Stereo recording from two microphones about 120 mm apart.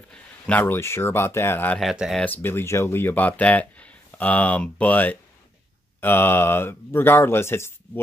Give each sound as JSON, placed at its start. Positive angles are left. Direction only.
{"t": 0.1, "sound": "speech", "side_deg": 15}
{"t": 1.8, "sound": "speech", "side_deg": 0}
{"t": 2.2, "sound": "speech", "side_deg": 15}